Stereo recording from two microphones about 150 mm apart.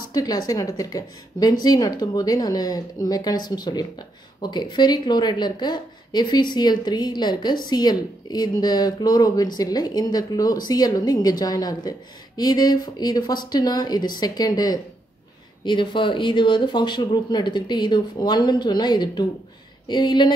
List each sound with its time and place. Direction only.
0.1 s speech: 25° left (ahead or behind)